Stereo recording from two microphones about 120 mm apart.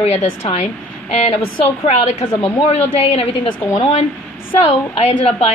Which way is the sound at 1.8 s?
50° left (ahead or behind).